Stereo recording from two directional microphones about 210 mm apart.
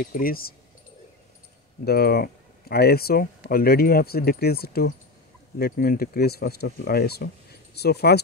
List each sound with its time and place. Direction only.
0.0 s speech: 45° left (ahead or behind)
1.9 s speech: 50° left (ahead or behind)